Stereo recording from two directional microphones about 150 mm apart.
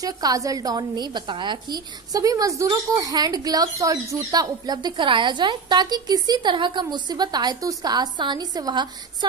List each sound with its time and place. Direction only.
0.0 s a woman's voice: 25° right (ahead or behind)